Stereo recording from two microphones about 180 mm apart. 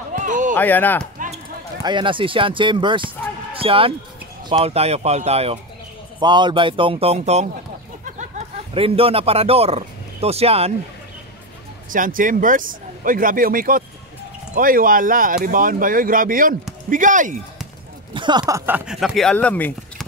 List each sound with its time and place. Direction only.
0.1 s a sound: 45° right (ahead or behind)
0.6 s speech: 10° left (ahead or behind)
1.8 s a man's voice: 25° right (ahead or behind)
8.7 s a man's voice: 30° right (ahead or behind)
11.9 s speech: 50° right (ahead or behind)
18.1 s a sound: 25° right (ahead or behind)
18.5 s speech: 10° right (ahead or behind); by 20.1 s 10° left (ahead or behind)